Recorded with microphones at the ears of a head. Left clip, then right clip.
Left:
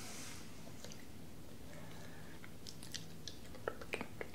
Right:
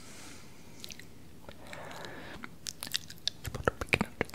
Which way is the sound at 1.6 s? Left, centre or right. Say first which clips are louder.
Right 13 dB; right.